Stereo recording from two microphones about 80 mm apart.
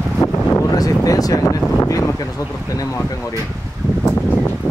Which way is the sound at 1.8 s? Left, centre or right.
Left.